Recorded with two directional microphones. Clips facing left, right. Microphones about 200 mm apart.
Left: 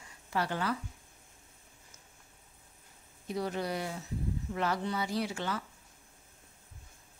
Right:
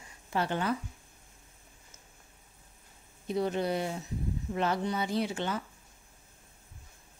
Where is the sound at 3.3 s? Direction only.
25° right (ahead or behind).